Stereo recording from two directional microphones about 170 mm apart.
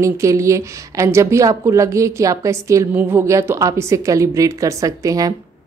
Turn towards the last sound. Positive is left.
turn(degrees=-20)  # may be behind; listen again after turning